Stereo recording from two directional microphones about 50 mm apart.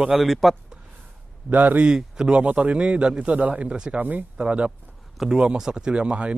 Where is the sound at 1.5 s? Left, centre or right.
Right.